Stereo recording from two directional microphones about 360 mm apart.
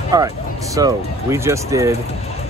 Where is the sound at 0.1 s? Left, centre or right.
Centre.